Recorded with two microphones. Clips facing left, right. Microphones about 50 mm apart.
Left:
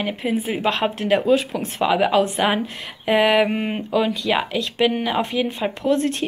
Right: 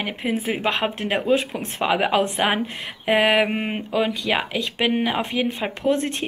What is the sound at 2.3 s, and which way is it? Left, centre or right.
Speech, right.